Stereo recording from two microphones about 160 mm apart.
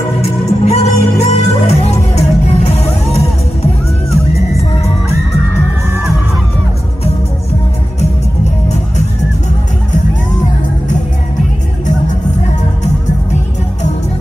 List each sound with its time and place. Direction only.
0.2 s music: 40° left (ahead or behind)